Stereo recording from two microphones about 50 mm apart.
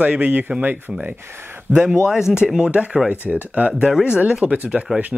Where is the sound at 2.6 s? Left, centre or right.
Right.